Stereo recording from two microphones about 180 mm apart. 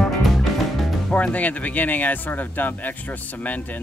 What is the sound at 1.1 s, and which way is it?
Speech, 10° left (ahead or behind).